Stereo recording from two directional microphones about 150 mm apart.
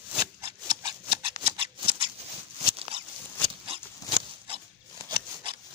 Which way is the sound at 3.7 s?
35° right (ahead or behind).